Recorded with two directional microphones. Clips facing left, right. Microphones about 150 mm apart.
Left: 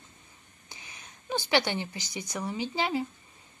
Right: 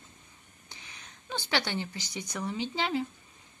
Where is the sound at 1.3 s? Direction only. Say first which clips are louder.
Left 5 dB; 15° left (ahead or behind).